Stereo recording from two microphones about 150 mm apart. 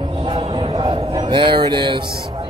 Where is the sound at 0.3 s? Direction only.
40° right (ahead or behind).